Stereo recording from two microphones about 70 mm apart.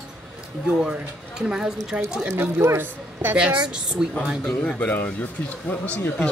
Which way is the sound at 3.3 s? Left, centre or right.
Centre.